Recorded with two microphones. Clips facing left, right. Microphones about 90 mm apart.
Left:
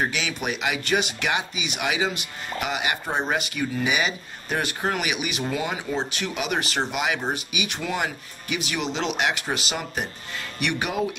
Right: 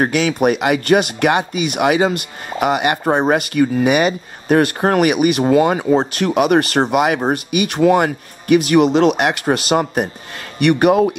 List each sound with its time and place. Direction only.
0.0 s speech: 50° right (ahead or behind)